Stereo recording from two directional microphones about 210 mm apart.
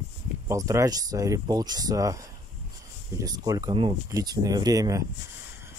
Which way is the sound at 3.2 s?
15° right (ahead or behind).